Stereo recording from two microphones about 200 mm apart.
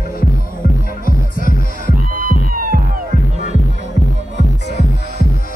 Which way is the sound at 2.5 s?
45° right (ahead or behind).